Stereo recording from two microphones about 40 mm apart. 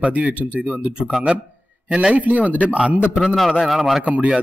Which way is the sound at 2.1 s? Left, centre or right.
Right.